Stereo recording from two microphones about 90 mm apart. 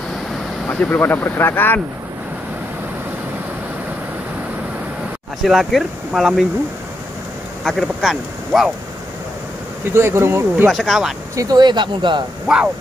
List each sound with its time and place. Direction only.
0.7 s speech: 20° left (ahead or behind)
5.4 s speech: centre (ahead or behind)
7.6 s speech: centre (ahead or behind)
9.9 s speech: 30° right (ahead or behind)
10.7 s speech: centre (ahead or behind)
11.3 s speech: 50° right (ahead or behind)